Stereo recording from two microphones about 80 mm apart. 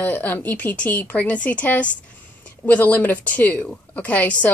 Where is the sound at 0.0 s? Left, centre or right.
Left.